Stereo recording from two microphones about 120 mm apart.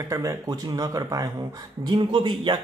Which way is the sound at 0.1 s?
30° right (ahead or behind).